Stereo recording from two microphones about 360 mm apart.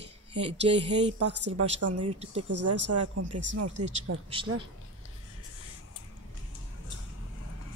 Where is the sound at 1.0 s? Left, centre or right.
Right.